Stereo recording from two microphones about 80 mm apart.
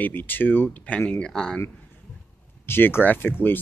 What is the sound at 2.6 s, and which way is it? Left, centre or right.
Speech, left.